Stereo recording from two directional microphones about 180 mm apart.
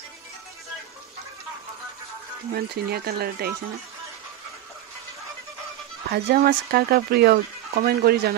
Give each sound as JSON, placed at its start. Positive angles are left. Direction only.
{"t": 2.5, "sound": "speech", "side_deg": -60}
{"t": 6.1, "sound": "speech", "side_deg": -60}